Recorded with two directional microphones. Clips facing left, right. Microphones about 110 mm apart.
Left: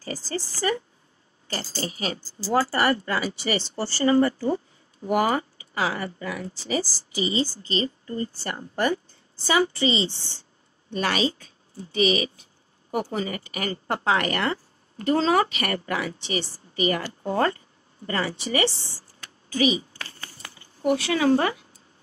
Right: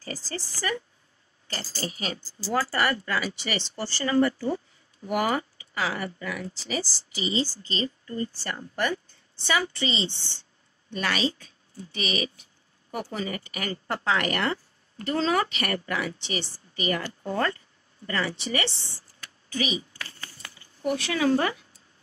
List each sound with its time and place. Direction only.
0.0 s speech: 30° left (ahead or behind)
6.8 s speech: 35° left (ahead or behind)
18.4 s a sound: 30° left (ahead or behind)